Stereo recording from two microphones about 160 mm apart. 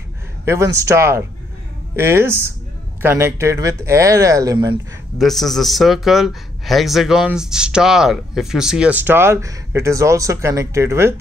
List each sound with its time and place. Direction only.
0.5 s speech: 20° right (ahead or behind)
5.2 s a man's voice: centre (ahead or behind); by 11.1 s 15° right (ahead or behind)